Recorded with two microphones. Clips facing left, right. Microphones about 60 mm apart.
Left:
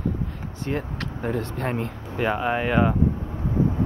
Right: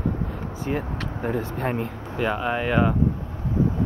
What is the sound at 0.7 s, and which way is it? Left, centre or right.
Speech, centre.